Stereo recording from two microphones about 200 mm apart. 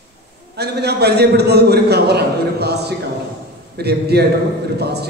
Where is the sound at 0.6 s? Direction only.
55° right (ahead or behind).